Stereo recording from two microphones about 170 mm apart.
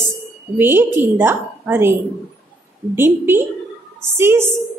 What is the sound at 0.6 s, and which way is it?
A woman's voice, 10° right (ahead or behind).